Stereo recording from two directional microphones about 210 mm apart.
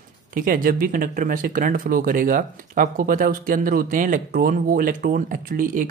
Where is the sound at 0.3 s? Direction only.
40° right (ahead or behind).